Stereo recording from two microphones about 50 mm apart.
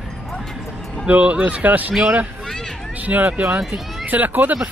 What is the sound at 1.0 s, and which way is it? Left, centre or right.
Speech, right.